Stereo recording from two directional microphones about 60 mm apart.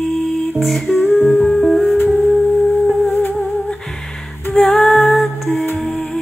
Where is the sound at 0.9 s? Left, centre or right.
Left.